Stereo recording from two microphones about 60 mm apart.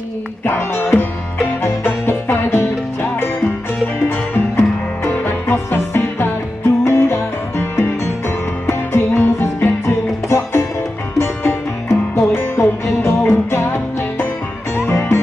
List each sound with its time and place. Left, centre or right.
0.4 s music: left
4.6 s music: left
9.8 s music: left